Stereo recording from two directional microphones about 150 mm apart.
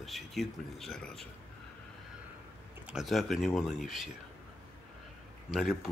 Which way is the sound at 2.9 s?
Centre (ahead or behind).